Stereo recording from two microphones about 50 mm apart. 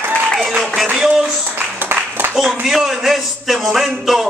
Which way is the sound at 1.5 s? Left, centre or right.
Right.